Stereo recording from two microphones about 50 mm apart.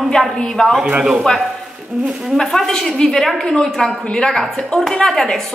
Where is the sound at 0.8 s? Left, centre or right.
Centre.